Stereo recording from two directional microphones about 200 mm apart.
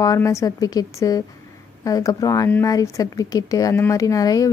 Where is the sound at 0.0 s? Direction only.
15° left (ahead or behind).